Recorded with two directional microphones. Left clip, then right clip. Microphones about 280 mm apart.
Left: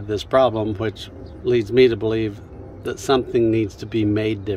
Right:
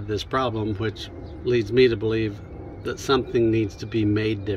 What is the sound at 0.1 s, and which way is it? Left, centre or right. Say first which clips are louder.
Speech: left 8 dB; centre.